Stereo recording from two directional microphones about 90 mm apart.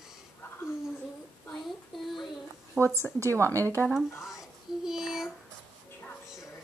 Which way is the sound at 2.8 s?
15° right (ahead or behind).